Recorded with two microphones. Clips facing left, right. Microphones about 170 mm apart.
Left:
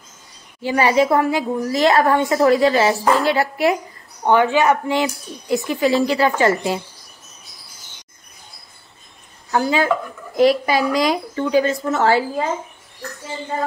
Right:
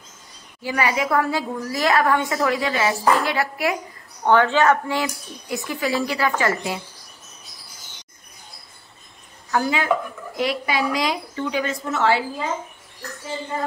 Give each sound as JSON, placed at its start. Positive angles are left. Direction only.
{"t": 0.6, "sound": "a woman's voice", "side_deg": 30}
{"t": 4.2, "sound": "a woman's voice", "side_deg": 15}
{"t": 9.5, "sound": "a woman's voice", "side_deg": 30}
{"t": 10.3, "sound": "speech", "side_deg": 40}